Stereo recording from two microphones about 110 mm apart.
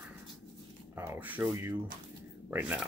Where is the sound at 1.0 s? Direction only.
15° right (ahead or behind).